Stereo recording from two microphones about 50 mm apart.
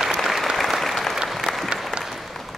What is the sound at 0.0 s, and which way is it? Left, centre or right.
Applause, centre.